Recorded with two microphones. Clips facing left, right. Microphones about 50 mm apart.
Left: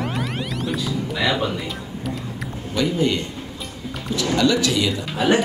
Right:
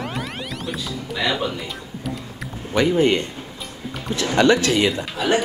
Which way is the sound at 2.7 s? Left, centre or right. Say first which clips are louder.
Right 4 dB; right.